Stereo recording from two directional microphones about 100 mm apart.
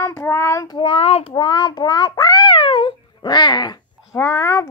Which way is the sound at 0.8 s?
75° left (ahead or behind).